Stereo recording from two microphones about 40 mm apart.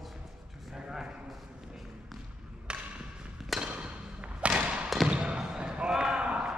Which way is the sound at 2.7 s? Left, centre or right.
Right.